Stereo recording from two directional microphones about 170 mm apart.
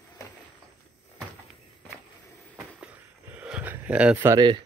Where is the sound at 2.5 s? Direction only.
10° right (ahead or behind).